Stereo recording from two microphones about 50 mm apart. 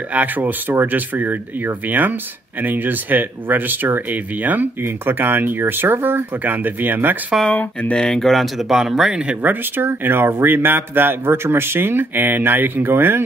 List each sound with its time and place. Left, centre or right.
0.1 s speech: right
7.9 s speech: centre
9.3 s speech: right
9.8 s speech: right